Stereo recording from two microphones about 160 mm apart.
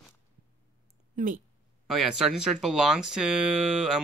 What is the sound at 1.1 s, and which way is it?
Speech, 55° right (ahead or behind).